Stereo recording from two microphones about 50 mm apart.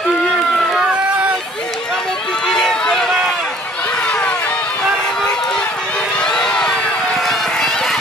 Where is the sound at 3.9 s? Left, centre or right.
Centre.